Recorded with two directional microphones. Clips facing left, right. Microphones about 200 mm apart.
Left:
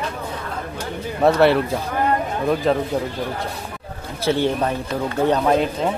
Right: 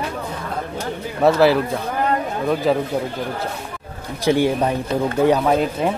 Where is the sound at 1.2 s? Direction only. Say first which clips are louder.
Right 1 dB; centre (ahead or behind).